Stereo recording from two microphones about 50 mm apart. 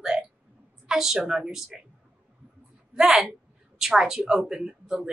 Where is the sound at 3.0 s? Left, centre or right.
Centre.